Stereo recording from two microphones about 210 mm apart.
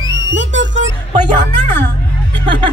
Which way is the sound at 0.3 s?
60° right (ahead or behind).